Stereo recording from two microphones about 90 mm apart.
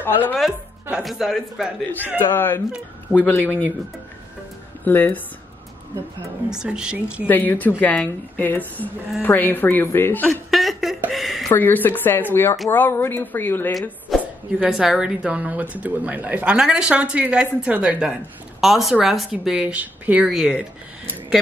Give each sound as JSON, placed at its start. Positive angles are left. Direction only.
{"t": 0.0, "sound": "a woman's voice", "side_deg": 20}
{"t": 0.4, "sound": "speech", "side_deg": -10}
{"t": 2.3, "sound": "a woman's voice", "side_deg": 25}
{"t": 4.8, "sound": "a woman's voice", "side_deg": 20}
{"t": 6.5, "sound": "a woman's voice", "side_deg": -10}
{"t": 7.2, "sound": "a woman's voice", "side_deg": 20}
{"t": 10.2, "sound": "a sound", "side_deg": 0}
{"t": 11.5, "sound": "a woman's voice", "side_deg": 20}
{"t": 14.1, "sound": "a sound", "side_deg": 0}
{"t": 14.6, "sound": "a woman's voice", "side_deg": -5}
{"t": 19.6, "sound": "a woman's voice", "side_deg": -15}